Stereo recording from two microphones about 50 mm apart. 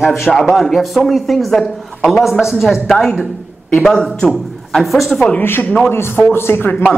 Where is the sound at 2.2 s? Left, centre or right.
Centre.